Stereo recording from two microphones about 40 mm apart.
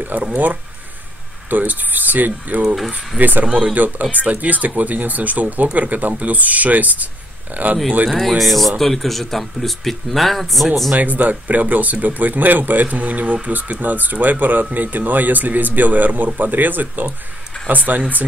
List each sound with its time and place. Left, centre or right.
0.0 s speech: right
1.5 s speech: right
3.4 s speech: right
4.0 s speech: right
8.1 s speech: centre
11.0 s speech: right